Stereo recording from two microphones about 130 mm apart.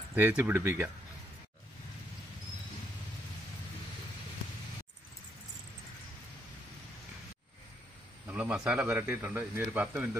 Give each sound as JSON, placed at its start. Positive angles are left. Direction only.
{"t": 0.1, "sound": "speech", "side_deg": -15}
{"t": 8.3, "sound": "speech", "side_deg": -10}